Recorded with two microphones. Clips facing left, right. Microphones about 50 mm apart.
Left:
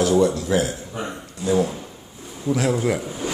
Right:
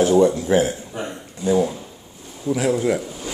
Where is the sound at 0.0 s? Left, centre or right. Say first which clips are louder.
Right 3 dB; right.